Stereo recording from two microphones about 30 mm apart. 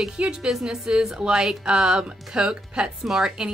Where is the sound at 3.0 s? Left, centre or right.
Centre.